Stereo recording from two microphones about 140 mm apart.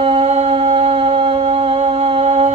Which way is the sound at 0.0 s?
50° right (ahead or behind).